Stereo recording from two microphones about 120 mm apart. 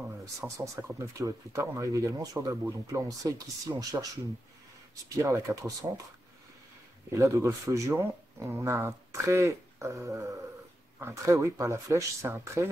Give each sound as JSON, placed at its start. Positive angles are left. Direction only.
{"t": 0.6, "sound": "speech", "side_deg": -25}
{"t": 5.1, "sound": "speech", "side_deg": -25}
{"t": 7.1, "sound": "speech", "side_deg": -25}